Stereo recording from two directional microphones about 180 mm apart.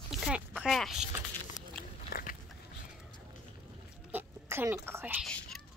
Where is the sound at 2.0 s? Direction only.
55° left (ahead or behind).